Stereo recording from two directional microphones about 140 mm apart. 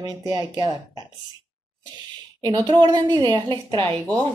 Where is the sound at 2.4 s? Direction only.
30° right (ahead or behind).